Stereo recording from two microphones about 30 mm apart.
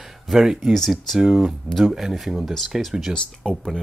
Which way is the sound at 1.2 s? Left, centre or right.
Right.